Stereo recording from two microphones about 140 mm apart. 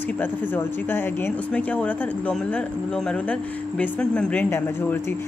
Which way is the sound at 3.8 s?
10° left (ahead or behind).